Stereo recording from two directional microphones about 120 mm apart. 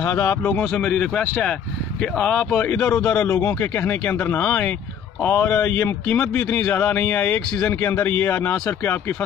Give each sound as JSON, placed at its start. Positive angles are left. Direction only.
{"t": 0.0, "sound": "speech", "side_deg": 20}
{"t": 0.7, "sound": "speech", "side_deg": 10}
{"t": 3.3, "sound": "speech", "side_deg": 20}